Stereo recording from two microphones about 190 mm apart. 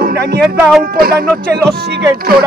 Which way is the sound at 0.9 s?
55° right (ahead or behind).